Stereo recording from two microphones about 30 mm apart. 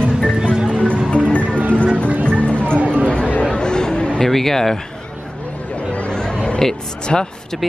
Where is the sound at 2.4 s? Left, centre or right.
Left.